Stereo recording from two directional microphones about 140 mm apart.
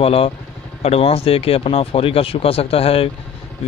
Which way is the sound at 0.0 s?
45° left (ahead or behind).